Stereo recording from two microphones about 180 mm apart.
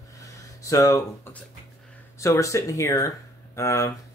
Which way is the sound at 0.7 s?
15° left (ahead or behind).